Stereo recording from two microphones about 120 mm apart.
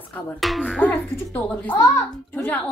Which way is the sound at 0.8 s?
15° left (ahead or behind).